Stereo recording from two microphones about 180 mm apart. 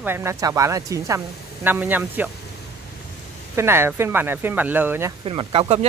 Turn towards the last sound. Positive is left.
turn(degrees=-30)  # may be behind; listen again after turning